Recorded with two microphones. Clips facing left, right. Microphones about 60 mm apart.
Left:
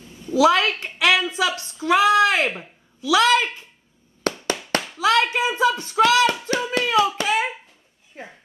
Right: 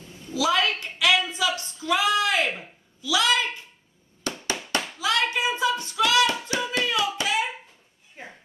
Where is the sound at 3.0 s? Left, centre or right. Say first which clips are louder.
Left 7 dB; left.